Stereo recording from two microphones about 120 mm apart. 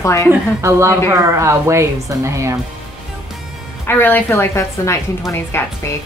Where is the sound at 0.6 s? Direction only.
25° right (ahead or behind).